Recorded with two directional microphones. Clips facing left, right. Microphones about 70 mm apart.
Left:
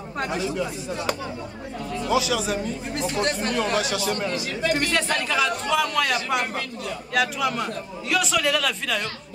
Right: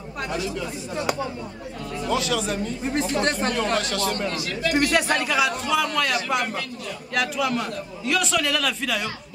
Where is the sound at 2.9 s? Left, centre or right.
Right.